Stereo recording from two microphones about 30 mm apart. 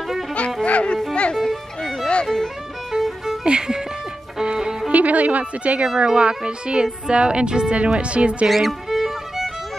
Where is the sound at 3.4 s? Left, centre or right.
Right.